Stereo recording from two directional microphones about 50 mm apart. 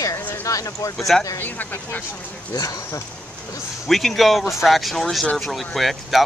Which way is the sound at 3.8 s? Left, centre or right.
Centre.